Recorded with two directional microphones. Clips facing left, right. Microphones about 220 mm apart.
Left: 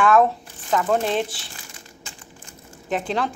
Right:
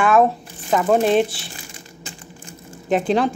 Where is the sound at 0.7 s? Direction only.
15° right (ahead or behind).